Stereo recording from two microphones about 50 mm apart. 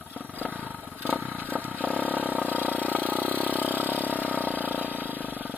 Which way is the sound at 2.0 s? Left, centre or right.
Right.